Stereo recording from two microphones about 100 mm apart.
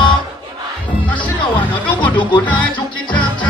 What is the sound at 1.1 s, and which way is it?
Music, 55° left (ahead or behind).